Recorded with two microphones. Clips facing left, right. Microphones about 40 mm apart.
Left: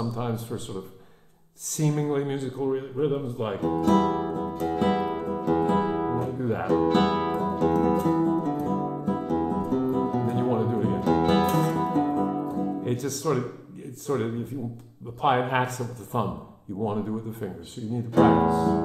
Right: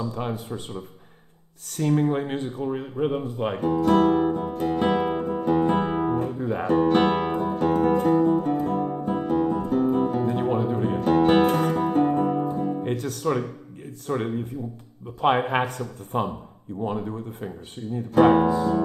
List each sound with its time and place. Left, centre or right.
0.0 s speech: right
3.3 s guitar: right
6.1 s music: right
12.7 s music: right
13.3 s a sound: right
15.5 s speech: right